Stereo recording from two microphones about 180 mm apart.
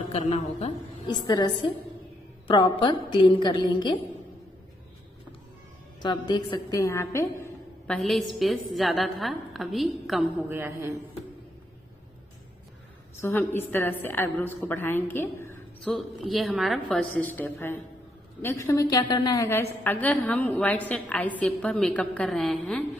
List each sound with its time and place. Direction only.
0.4 s a woman's voice: 45° left (ahead or behind)
1.0 s a woman's voice: 25° left (ahead or behind)
6.0 s a woman's voice: 25° left (ahead or behind); by 10.4 s centre (ahead or behind)
13.2 s a woman's voice: 10° left (ahead or behind)
17.2 s a woman's voice: 10° left (ahead or behind)